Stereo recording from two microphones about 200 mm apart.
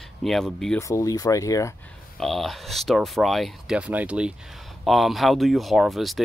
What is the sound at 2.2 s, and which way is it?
Speech, centre (ahead or behind).